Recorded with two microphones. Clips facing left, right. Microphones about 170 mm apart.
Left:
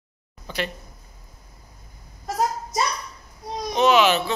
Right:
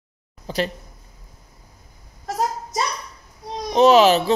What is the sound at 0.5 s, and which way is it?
Speech, 35° right (ahead or behind).